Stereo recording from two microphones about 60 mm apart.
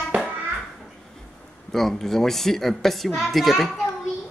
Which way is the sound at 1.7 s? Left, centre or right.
Centre.